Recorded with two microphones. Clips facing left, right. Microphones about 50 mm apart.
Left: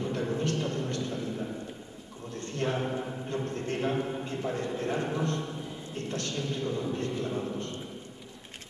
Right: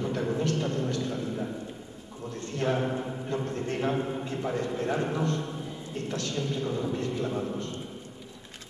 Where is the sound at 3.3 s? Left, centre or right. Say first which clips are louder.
Right 2 dB; right.